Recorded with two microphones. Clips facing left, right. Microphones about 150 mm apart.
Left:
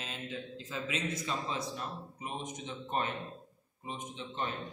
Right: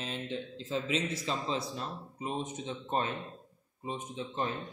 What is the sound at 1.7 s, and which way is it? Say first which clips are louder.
Speech: right 2 dB; 30° right (ahead or behind).